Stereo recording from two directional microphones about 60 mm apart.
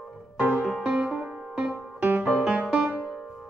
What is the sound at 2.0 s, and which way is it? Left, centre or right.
Music, right.